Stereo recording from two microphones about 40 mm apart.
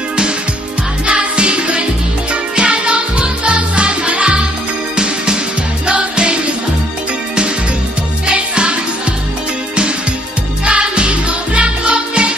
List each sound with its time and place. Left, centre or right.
1.0 s music: right
8.3 s music: right
10.6 s music: right